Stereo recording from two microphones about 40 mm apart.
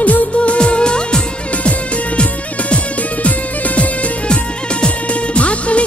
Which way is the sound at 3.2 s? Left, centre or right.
Left.